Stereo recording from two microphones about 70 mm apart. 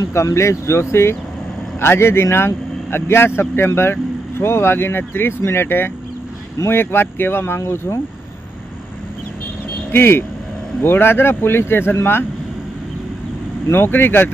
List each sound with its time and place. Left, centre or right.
0.1 s speech: left
9.8 s speech: left
13.7 s speech: left